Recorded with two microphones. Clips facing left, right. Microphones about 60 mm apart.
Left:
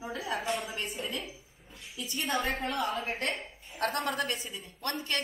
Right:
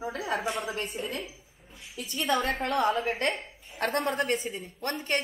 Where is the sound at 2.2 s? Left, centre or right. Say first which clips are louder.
Right 4 dB; right.